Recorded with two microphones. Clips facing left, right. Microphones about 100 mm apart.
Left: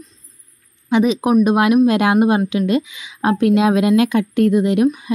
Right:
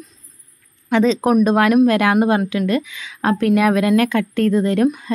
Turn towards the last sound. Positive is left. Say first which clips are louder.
# left 2 dB
turn(degrees=15)  # may be behind; listen again after turning